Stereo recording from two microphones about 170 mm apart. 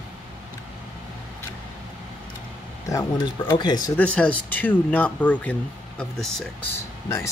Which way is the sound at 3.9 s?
5° left (ahead or behind).